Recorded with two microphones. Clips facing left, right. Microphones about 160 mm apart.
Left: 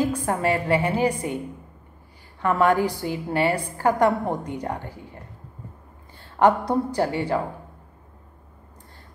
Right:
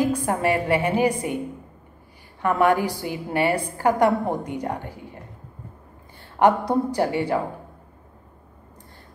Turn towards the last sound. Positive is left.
turn(degrees=-15)  # may be behind; listen again after turning